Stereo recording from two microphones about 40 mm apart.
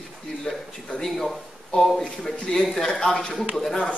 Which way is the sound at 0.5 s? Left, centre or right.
Centre.